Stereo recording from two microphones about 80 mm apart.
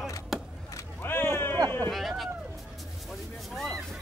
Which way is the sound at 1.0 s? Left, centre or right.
Left.